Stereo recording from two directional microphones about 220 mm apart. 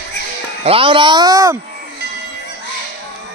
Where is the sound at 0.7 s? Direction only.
25° right (ahead or behind).